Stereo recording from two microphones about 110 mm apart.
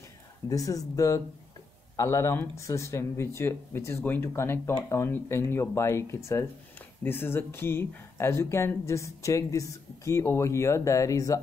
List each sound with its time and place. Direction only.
0.5 s speech: 30° left (ahead or behind)